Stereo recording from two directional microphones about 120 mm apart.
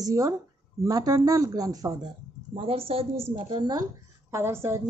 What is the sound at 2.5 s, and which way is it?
Speech, 50° right (ahead or behind).